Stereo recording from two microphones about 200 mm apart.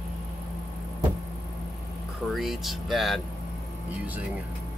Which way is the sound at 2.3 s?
Centre (ahead or behind).